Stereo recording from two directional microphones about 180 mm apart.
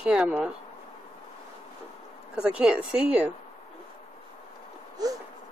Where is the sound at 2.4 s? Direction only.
5° right (ahead or behind).